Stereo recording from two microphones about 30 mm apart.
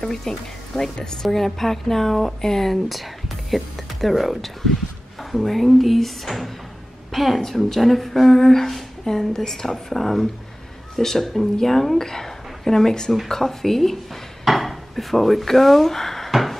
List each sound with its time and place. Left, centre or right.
0.0 s speech: centre
2.4 s speech: centre
2.7 s a woman's voice: centre
14.4 s speech: centre
16.3 s a sound: centre